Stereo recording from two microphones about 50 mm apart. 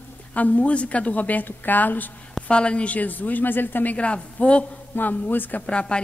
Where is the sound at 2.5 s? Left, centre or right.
Left.